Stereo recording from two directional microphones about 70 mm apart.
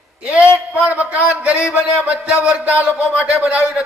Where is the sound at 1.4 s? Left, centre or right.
Centre.